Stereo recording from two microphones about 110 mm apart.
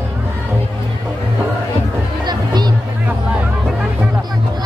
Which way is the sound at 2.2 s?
40° right (ahead or behind).